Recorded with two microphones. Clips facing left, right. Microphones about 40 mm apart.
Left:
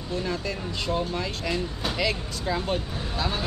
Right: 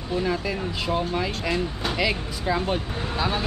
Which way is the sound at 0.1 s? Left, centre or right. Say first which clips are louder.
Right 4 dB; centre.